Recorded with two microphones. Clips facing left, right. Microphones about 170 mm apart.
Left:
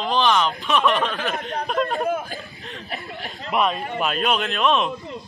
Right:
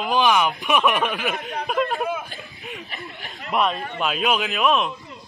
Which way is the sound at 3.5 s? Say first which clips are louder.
Left 1 dB; centre (ahead or behind).